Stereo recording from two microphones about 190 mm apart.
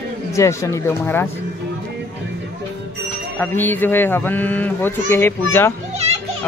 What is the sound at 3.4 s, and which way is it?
Speech, 10° left (ahead or behind).